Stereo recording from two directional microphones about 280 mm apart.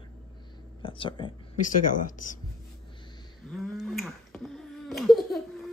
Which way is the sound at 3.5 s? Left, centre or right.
Centre.